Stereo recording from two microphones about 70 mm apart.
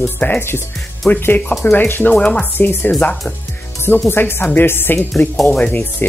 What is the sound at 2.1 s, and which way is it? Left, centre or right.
Speech, centre.